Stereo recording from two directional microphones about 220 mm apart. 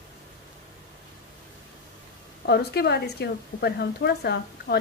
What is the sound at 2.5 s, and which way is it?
A woman's voice, 45° left (ahead or behind).